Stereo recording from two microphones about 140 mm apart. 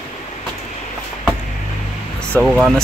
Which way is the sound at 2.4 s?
Centre (ahead or behind).